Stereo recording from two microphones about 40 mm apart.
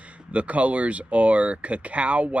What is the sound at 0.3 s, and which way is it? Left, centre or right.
Speech, right.